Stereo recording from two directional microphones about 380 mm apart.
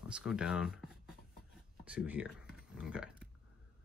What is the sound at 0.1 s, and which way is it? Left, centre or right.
Speech, centre.